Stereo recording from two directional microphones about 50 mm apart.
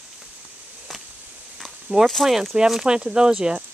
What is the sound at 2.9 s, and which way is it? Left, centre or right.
Speech, centre.